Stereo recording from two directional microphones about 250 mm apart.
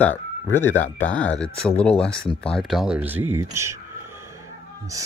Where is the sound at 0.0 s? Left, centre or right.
Centre.